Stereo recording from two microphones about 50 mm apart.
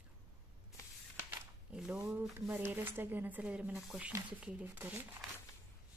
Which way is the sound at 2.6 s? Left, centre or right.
Right.